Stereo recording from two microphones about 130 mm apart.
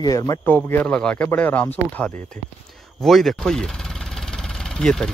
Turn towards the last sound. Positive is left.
turn(degrees=5)  # may be behind; listen again after turning